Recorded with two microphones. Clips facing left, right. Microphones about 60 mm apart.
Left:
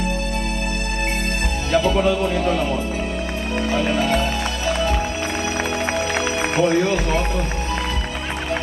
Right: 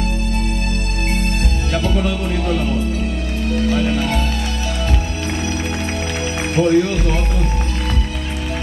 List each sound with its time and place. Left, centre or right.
1.8 s speech: centre
6.5 s speech: left